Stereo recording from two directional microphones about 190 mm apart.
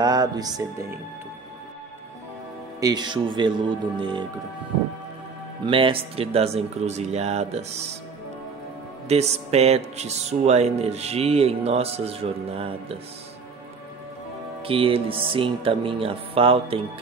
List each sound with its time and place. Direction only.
0.0 s speech: 20° right (ahead or behind)
2.8 s speech: 20° right (ahead or behind)
5.7 s speech: 30° right (ahead or behind)
9.1 s speech: 35° right (ahead or behind)
14.6 s speech: 30° right (ahead or behind)